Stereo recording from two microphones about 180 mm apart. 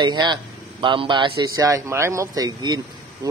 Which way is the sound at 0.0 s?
25° right (ahead or behind).